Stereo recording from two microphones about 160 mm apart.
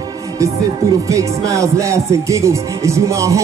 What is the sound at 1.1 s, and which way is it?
Music, 20° right (ahead or behind).